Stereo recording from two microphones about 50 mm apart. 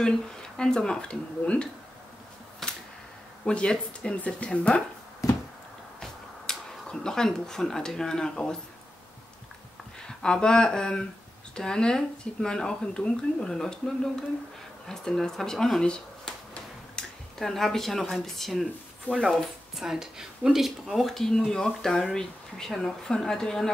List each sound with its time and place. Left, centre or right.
0.0 s speech: centre
2.6 s a sound: centre
3.4 s speech: centre
5.2 s a sound: left
5.9 s speech: centre
10.0 s speech: centre
17.0 s a sound: centre
17.4 s speech: centre
19.8 s a woman's voice: centre